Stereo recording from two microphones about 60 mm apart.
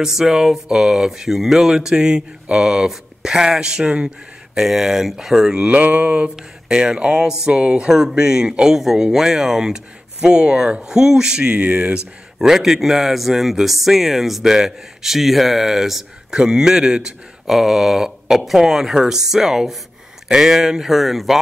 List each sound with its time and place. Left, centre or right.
0.0 s speech: centre
5.7 s mantra: right
6.3 s speech: centre
12.4 s speech: centre